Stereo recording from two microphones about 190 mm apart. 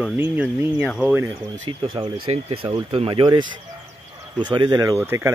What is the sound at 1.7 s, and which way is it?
Speech, 25° right (ahead or behind).